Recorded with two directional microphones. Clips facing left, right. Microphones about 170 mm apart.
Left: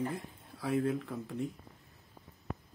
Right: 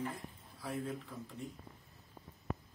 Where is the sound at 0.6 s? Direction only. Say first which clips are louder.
Left 9 dB; 70° left (ahead or behind).